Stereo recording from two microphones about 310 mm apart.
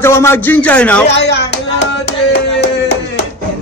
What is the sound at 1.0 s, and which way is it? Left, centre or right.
Music, left.